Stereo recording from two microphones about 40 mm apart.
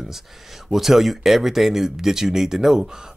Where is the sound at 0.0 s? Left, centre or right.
Centre.